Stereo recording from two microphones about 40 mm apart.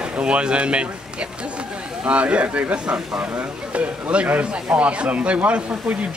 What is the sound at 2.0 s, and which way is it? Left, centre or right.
Speech, right.